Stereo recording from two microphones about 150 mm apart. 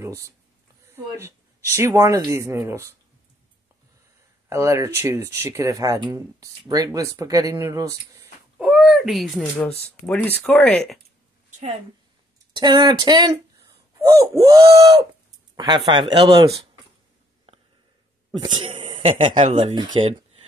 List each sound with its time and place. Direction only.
0.0 s speech: 20° right (ahead or behind)
4.5 s speech: 20° right (ahead or behind)
8.5 s speech: 5° right (ahead or behind)
12.5 s speech: 30° right (ahead or behind)
18.7 s a sound: 50° right (ahead or behind)
19.5 s speech: 35° right (ahead or behind)